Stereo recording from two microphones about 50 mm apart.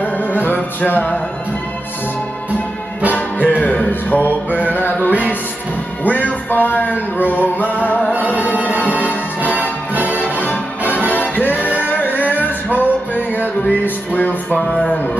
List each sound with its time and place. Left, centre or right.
0.0 s music: left
3.1 s music: left
6.0 s a sound: left
9.6 s music: right
11.9 s music: left